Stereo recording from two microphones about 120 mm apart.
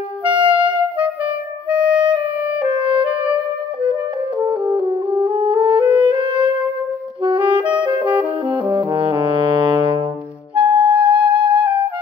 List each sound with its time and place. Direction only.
0.3 s music: 45° right (ahead or behind)
1.7 s music: 10° right (ahead or behind)
2.6 s music: 40° right (ahead or behind)
5.2 s music: 45° right (ahead or behind)
7.8 s saxophone: 40° right (ahead or behind)
8.2 s brass instrument: 45° right (ahead or behind)
10.5 s music: 45° right (ahead or behind)